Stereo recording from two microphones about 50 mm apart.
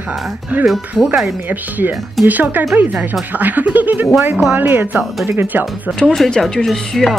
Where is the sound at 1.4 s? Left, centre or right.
Right.